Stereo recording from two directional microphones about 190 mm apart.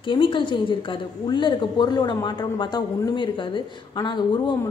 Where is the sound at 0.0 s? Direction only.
25° left (ahead or behind).